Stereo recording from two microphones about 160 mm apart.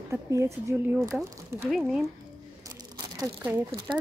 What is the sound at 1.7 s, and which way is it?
Speech, centre (ahead or behind).